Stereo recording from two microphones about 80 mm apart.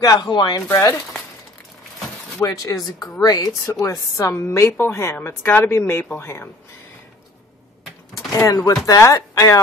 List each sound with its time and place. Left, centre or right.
0.0 s speech: left
0.6 s a woman's voice: left
2.4 s a woman's voice: left
8.3 s a woman's voice: left